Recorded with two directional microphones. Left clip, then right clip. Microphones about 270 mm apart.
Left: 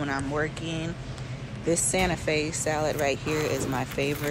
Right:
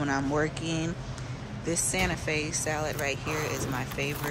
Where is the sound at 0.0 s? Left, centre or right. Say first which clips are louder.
Right 1 dB; centre.